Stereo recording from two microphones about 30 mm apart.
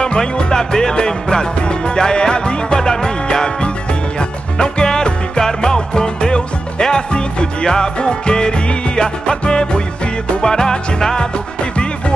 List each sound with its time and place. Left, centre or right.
0.0 s music: left
4.6 s music: left